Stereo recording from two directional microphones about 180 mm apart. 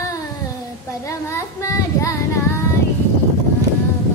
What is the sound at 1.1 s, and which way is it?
Child singing, 15° left (ahead or behind).